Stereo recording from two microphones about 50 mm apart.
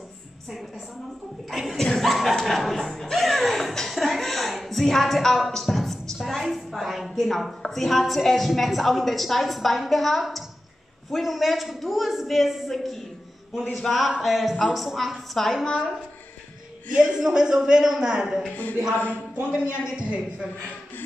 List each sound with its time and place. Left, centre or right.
1.5 s a woman's voice: centre
1.8 s speech: centre
2.0 s a woman's voice: centre
6.1 s a sound: centre
7.7 s a woman's voice: centre
17.1 s a woman's voice: centre
18.6 s a sound: left
19.5 s a woman's voice: centre